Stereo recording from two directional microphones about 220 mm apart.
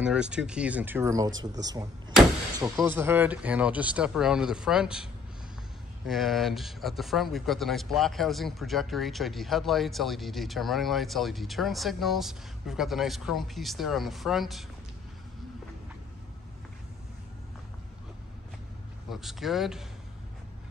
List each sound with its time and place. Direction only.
0.0 s speech: 5° right (ahead or behind)
19.0 s speech: centre (ahead or behind)